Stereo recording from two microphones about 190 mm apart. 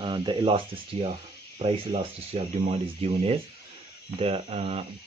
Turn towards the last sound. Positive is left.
turn(degrees=-30)  # may be behind; listen again after turning